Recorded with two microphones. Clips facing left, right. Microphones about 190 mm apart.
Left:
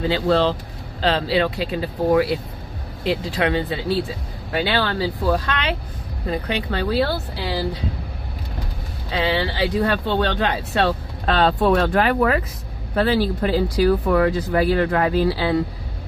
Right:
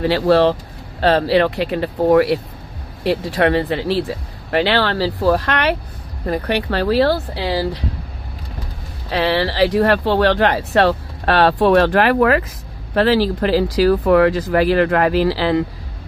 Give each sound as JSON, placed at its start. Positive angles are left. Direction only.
{"t": 0.0, "sound": "speech", "side_deg": -70}
{"t": 3.3, "sound": "speech", "side_deg": -65}
{"t": 9.1, "sound": "speech", "side_deg": -70}
{"t": 12.9, "sound": "speech", "side_deg": -90}